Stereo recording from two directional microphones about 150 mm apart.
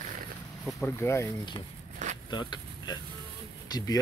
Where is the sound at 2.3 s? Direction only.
30° left (ahead or behind).